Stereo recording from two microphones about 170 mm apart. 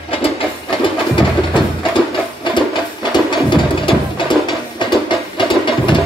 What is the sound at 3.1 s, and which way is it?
Music, 25° left (ahead or behind).